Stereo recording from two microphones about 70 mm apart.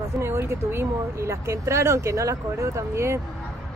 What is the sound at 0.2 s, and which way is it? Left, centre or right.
Speech, right.